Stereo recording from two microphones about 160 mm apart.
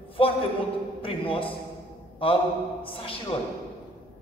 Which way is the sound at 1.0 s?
35° left (ahead or behind).